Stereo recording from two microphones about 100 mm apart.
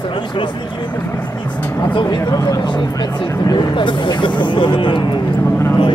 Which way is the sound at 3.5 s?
50° left (ahead or behind).